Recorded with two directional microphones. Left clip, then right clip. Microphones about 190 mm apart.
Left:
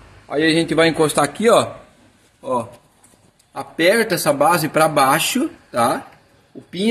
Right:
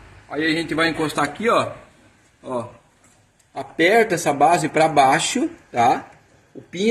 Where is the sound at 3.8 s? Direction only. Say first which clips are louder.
Left 1 dB; 40° left (ahead or behind).